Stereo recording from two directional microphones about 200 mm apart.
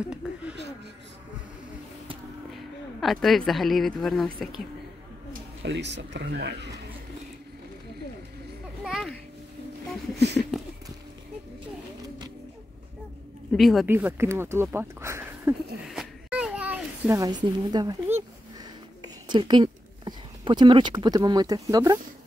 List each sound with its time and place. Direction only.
0.1 s a sound: 5° right (ahead or behind)
3.0 s a woman's voice: centre (ahead or behind)
5.3 s speech: 60° right (ahead or behind)
8.8 s children playing: centre (ahead or behind)
10.1 s a sound: 55° right (ahead or behind)
13.6 s a woman's voice: centre (ahead or behind)
13.8 s a sound: 10° right (ahead or behind)
17.2 s speech: 20° right (ahead or behind)
19.2 s speech: 20° right (ahead or behind)